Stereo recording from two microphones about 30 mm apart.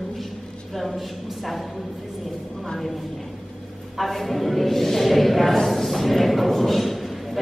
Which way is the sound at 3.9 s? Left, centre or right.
Centre.